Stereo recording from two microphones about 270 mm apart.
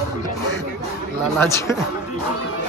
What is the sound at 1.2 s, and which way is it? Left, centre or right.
Speech, centre.